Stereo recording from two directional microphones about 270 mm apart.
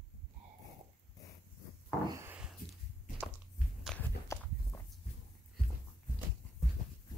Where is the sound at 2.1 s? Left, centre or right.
Centre.